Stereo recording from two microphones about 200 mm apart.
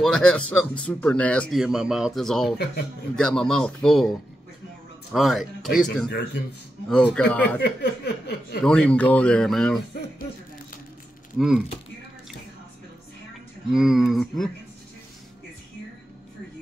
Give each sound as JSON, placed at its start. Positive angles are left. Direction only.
{"t": 0.0, "sound": "speech", "side_deg": 5}
{"t": 2.5, "sound": "speech", "side_deg": 55}
{"t": 3.2, "sound": "speech", "side_deg": 5}
{"t": 5.1, "sound": "speech", "side_deg": 0}
{"t": 6.0, "sound": "speech", "side_deg": 55}
{"t": 6.9, "sound": "speech", "side_deg": 5}
{"t": 7.6, "sound": "chuckle", "side_deg": 55}
{"t": 8.6, "sound": "speech", "side_deg": 5}
{"t": 11.3, "sound": "speech", "side_deg": -5}
{"t": 13.7, "sound": "speech", "side_deg": 0}